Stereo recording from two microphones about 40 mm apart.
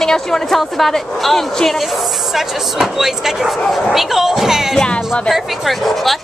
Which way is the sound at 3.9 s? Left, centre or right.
Centre.